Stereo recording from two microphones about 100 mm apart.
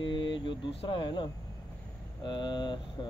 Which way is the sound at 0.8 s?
50° left (ahead or behind).